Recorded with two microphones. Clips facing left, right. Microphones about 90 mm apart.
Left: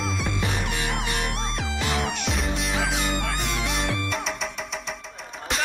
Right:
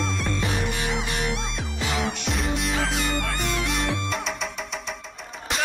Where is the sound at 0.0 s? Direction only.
Centre (ahead or behind).